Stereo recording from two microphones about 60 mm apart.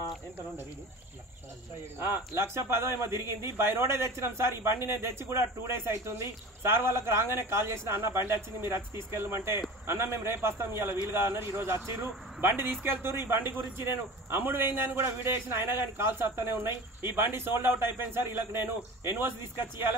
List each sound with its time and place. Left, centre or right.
2.0 s a man's voice: right
2.5 s a man's voice: right